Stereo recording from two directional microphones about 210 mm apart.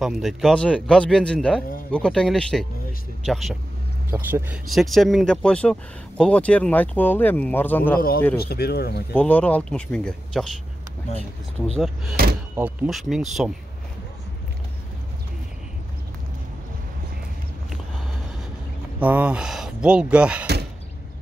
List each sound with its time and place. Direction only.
0.0 s speech: centre (ahead or behind)
8.4 s speech: 50° left (ahead or behind)
9.1 s speech: 5° left (ahead or behind)
12.2 s speech: 45° right (ahead or behind)
12.5 s speech: 5° right (ahead or behind)
18.9 s speech: 5° right (ahead or behind)